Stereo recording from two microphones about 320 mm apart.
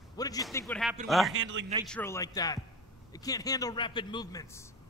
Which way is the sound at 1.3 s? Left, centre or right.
Right.